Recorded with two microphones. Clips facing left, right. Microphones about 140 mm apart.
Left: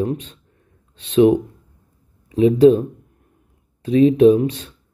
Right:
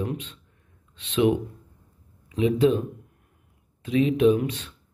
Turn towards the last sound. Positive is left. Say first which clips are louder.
# left 7 dB
turn(degrees=35)  # may be behind; listen again after turning